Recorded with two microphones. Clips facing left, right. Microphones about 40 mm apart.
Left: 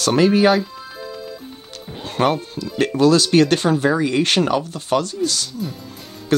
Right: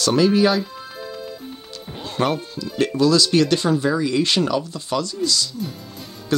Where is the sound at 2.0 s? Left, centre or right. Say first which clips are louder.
Left 3 dB; left.